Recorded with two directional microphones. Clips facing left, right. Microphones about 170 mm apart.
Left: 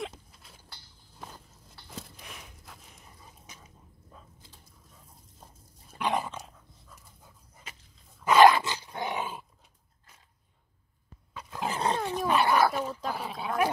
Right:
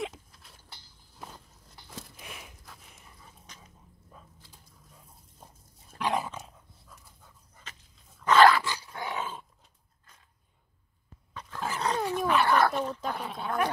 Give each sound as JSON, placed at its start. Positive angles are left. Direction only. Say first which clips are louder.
{"t": 0.0, "sound": "a sound", "louder": "right 2 dB", "side_deg": 0}
{"t": 1.9, "sound": "a sound", "louder": "even", "side_deg": 0}
{"t": 5.9, "sound": "dog", "louder": "even", "side_deg": 0}
{"t": 7.7, "sound": "dog", "louder": "left 1 dB", "side_deg": 10}
{"t": 11.3, "sound": "dog", "louder": "left 2 dB", "side_deg": 15}
{"t": 12.5, "sound": "dog", "louder": "even", "side_deg": 5}